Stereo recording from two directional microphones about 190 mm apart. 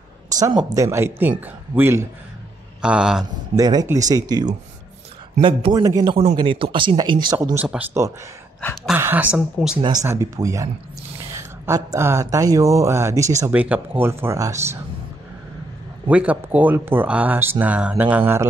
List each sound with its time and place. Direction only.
0.7 s a man's voice: 15° right (ahead or behind)
3.5 s speech: 20° right (ahead or behind)
7.5 s speech: 10° right (ahead or behind)
8.5 s a man's voice: 5° left (ahead or behind)
8.9 s speech: 10° right (ahead or behind)
9.8 s speech: 25° right (ahead or behind)
16.1 s speech: 5° right (ahead or behind)